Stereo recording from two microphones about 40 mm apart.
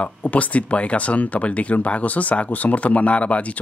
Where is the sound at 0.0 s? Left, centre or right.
Left.